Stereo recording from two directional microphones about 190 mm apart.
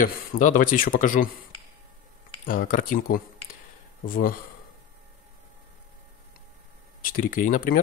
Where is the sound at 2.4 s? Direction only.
45° left (ahead or behind).